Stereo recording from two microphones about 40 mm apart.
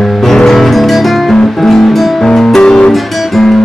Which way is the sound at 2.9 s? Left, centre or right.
Centre.